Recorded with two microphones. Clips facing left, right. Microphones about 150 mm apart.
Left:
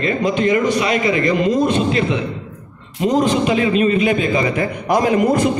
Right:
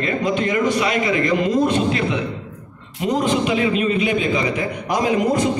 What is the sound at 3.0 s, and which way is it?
A man's voice, 35° left (ahead or behind).